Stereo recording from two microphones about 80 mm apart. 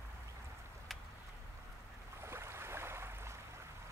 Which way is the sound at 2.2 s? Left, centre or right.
Right.